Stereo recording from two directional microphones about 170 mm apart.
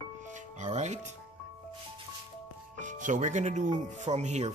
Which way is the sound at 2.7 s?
45° right (ahead or behind).